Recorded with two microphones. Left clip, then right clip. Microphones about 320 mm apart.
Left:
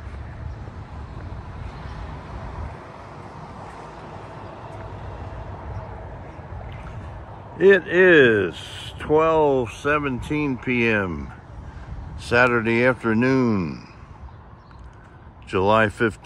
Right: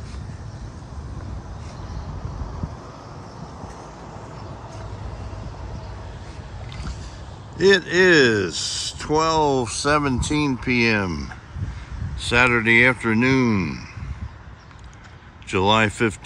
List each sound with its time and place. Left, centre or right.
7.5 s speech: centre
12.3 s speech: centre
15.5 s speech: centre